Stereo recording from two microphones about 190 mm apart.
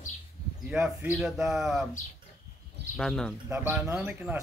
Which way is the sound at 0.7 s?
5° right (ahead or behind).